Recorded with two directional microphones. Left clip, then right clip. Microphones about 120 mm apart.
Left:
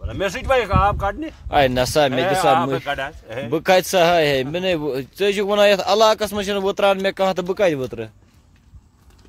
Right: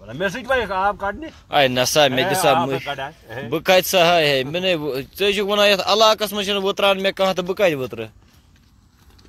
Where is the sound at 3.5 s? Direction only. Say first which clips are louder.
Even; 50° left (ahead or behind).